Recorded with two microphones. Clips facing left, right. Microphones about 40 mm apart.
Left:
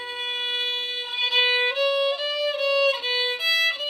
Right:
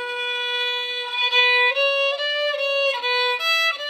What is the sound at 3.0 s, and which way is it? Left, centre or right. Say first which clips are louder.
Violin: right 4 dB; right.